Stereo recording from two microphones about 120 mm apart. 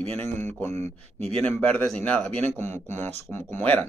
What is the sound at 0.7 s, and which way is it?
Speech, 65° right (ahead or behind).